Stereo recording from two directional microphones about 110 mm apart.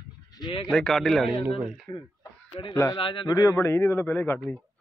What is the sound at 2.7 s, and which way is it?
Speech, 25° left (ahead or behind).